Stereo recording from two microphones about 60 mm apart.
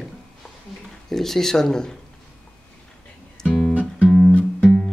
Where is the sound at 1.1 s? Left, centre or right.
Centre.